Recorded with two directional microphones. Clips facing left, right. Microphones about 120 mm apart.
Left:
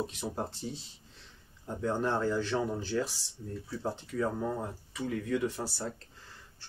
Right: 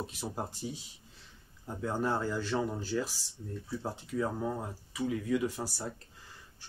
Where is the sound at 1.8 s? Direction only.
5° right (ahead or behind).